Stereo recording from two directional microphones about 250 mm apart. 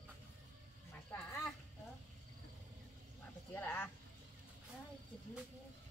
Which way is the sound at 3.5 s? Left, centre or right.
Centre.